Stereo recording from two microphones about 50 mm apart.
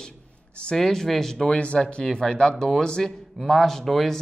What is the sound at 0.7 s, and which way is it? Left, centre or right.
A man's voice, centre.